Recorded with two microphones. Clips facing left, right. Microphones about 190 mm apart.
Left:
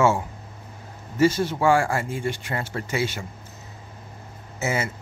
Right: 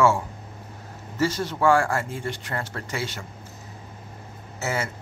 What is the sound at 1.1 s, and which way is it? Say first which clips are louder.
Speech: left 5 dB; 15° left (ahead or behind).